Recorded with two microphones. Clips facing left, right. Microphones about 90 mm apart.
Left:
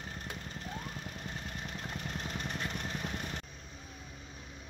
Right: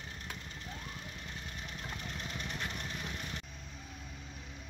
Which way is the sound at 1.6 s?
45° left (ahead or behind).